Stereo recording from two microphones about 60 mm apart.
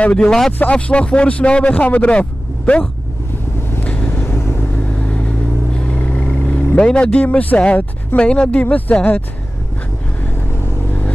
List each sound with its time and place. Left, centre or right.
0.0 s speech: centre
3.8 s vehicle: left
4.1 s vehicle: left
6.0 s vehicle: left
6.9 s speech: centre